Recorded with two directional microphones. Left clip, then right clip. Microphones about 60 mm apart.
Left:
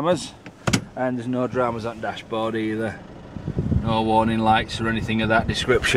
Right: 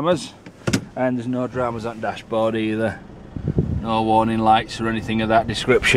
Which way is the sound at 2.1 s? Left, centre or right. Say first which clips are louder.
Right 6 dB; centre.